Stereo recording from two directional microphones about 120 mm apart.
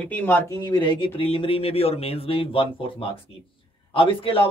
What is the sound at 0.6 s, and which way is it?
Speech, 40° left (ahead or behind).